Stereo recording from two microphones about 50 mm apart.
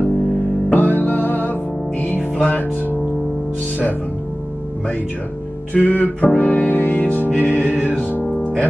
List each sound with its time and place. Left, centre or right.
0.7 s music: left
5.7 s music: left